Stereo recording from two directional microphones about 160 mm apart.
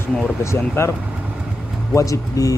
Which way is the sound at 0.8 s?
15° left (ahead or behind).